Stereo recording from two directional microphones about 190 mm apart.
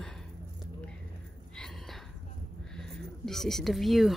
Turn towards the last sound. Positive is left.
turn(degrees=0)  # may be behind; listen again after turning